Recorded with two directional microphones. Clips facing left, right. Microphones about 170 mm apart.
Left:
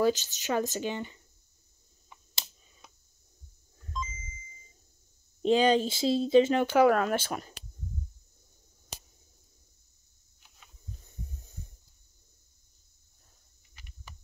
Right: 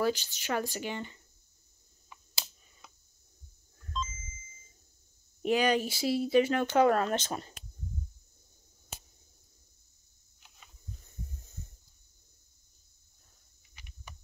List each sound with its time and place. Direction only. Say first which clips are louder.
0.0 s speech: left 4 dB; 20° left (ahead or behind)
3.8 s beep: right 1 dB; 15° left (ahead or behind)
5.4 s speech: left 4 dB; 25° left (ahead or behind)
6.6 s speech: left 2 dB; 10° left (ahead or behind)
7.2 s speech: left 2 dB; 20° right (ahead or behind)